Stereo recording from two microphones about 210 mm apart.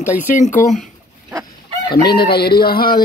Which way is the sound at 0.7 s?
Centre (ahead or behind).